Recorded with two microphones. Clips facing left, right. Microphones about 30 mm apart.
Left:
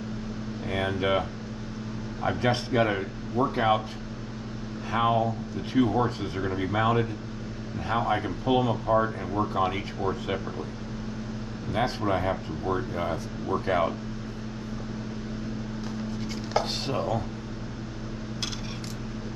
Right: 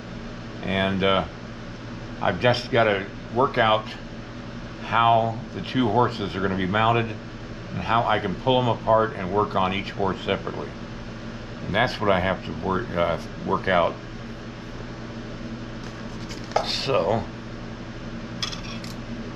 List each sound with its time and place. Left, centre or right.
0.7 s air conditioning: right
2.2 s speech: right
4.9 s speech: right
11.7 s speech: right
16.6 s speech: right